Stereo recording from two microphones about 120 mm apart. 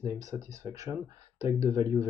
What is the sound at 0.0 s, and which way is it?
Speech, 25° right (ahead or behind).